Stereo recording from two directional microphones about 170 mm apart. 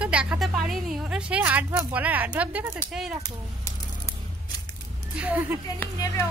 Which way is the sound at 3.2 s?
15° left (ahead or behind).